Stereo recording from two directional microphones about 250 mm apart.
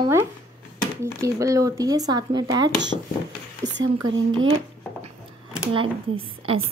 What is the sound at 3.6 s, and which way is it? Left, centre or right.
Speech, right.